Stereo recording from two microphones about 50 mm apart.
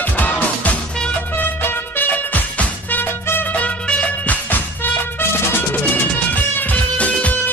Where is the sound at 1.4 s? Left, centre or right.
Left.